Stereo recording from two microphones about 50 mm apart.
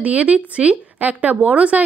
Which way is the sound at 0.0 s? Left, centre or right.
Right.